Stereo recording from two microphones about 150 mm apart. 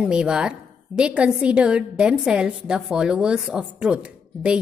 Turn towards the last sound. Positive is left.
turn(degrees=-5)  # may be behind; listen again after turning